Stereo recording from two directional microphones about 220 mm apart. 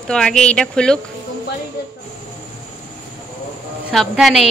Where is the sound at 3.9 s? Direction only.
Centre (ahead or behind).